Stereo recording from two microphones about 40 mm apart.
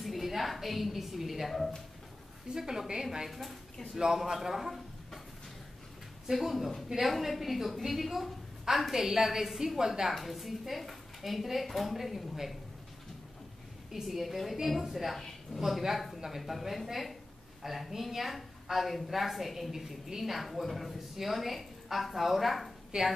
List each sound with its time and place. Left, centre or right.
0.0 s a woman's voice: centre
2.5 s a man's voice: centre
3.3 s a woman's voice: centre
3.9 s a man's voice: centre
6.2 s a woman's voice: centre
10.1 s a woman's voice: centre
14.0 s a woman's voice: centre
15.1 s a woman's voice: centre
15.6 s a woman's voice: centre
22.9 s a man's voice: centre